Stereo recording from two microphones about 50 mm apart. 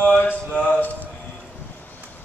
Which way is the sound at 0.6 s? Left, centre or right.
Left.